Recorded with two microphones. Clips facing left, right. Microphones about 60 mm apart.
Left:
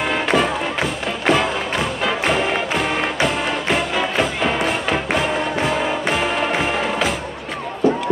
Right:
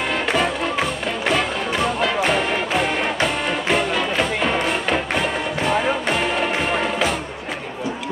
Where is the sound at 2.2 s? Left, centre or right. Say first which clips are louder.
Left 1 dB; centre.